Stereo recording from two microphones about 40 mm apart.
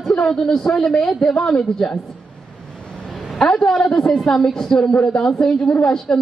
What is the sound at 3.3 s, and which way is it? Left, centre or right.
A man's voice, centre.